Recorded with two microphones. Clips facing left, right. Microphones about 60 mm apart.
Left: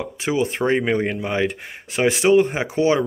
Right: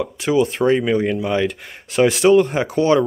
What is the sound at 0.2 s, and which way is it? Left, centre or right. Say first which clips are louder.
Speech: right 4 dB; left.